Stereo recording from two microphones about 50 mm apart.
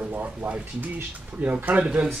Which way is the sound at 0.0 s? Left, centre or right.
Right.